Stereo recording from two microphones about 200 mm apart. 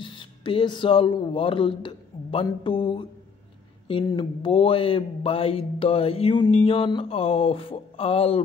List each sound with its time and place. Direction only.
0.0 s speech: 25° left (ahead or behind)